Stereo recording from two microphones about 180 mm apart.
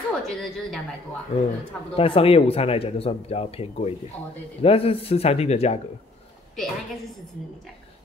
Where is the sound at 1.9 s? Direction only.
30° left (ahead or behind).